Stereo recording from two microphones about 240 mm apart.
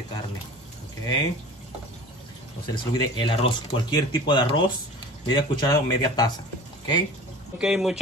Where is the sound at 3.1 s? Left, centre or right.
Centre.